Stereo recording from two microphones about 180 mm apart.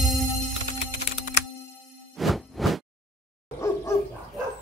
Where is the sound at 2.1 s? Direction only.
Centre (ahead or behind).